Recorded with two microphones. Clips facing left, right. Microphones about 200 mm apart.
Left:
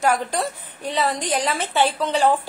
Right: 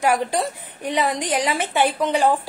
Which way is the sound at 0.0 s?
15° right (ahead or behind).